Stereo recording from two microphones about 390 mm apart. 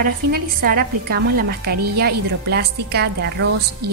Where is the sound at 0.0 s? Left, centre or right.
Right.